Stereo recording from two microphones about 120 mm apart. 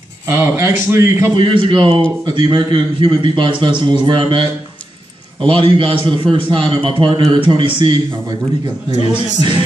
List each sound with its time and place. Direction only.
0.3 s a man's voice: 20° right (ahead or behind)
1.3 s a man's voice: 45° right (ahead or behind)
8.9 s speech: 55° left (ahead or behind)